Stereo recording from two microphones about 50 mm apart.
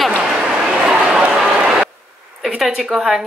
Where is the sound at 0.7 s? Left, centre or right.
Right.